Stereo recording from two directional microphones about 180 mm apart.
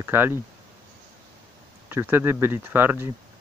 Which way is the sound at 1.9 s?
10° right (ahead or behind).